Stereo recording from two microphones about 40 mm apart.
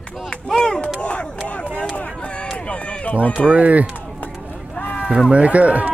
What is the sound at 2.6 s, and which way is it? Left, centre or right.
Run, left.